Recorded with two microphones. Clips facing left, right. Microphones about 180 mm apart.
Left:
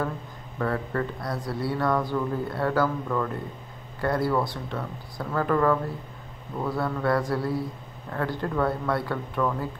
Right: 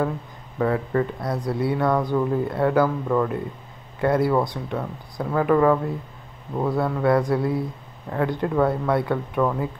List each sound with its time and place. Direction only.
0.6 s speech: 20° right (ahead or behind)